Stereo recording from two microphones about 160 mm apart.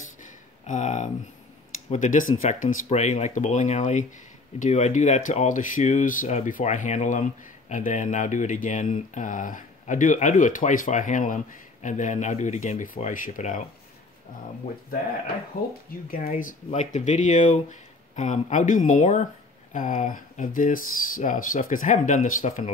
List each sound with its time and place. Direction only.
0.2 s a sound: 50° left (ahead or behind)
1.9 s speech: 50° left (ahead or behind)
15.9 s speech: 65° left (ahead or behind)
16.3 s speech: 50° left (ahead or behind)